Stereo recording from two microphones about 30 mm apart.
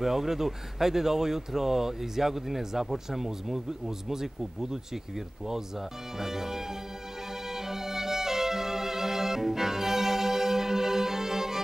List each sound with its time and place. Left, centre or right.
0.0 s speech: centre
7.4 s music: centre